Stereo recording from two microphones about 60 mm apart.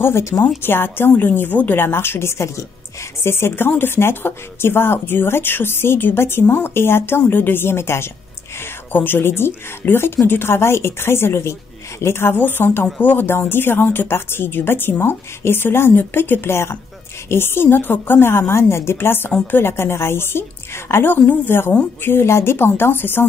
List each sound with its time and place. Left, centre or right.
0.0 s a woman's voice: left
0.6 s speech: left
18.5 s a woman's voice: left